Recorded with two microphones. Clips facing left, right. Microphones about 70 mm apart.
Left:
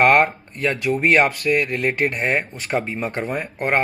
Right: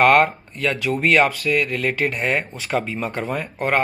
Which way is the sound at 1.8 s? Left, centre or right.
Left.